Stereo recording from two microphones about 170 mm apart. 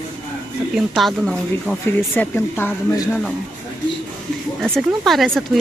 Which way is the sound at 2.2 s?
10° left (ahead or behind).